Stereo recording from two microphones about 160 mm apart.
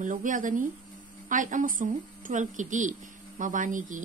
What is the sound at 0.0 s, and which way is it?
Speech, 55° right (ahead or behind).